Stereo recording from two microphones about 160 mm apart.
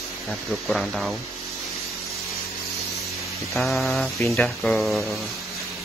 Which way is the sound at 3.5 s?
Centre (ahead or behind).